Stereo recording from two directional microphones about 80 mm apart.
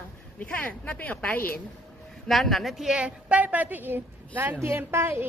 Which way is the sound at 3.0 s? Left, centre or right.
Centre.